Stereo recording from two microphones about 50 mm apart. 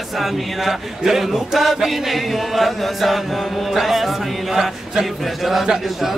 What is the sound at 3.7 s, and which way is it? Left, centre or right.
A man's voice, centre.